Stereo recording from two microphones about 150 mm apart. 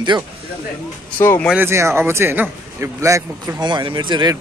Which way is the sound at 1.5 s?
15° right (ahead or behind).